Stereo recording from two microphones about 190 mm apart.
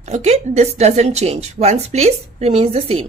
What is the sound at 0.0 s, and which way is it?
A woman's voice, 35° right (ahead or behind).